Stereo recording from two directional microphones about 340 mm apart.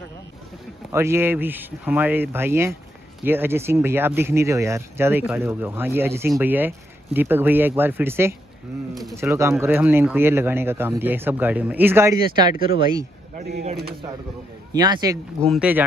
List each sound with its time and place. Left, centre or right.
0.9 s speech: centre
13.4 s speech: right
14.7 s speech: centre